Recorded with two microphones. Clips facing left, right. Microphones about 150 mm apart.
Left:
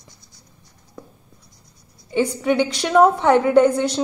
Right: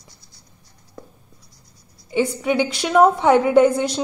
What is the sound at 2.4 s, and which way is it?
A woman's voice, 10° right (ahead or behind).